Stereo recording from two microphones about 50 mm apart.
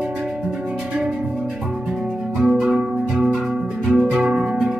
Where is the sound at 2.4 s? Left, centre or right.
Centre.